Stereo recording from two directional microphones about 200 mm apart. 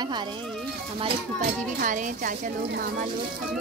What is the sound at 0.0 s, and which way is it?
Speech, 20° right (ahead or behind).